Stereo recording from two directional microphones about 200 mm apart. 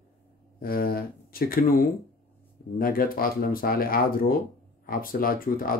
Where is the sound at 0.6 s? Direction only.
45° left (ahead or behind).